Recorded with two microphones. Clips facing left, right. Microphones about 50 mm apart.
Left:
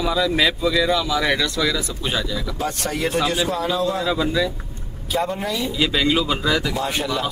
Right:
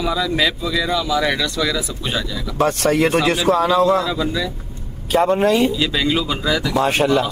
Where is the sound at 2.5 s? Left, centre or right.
Right.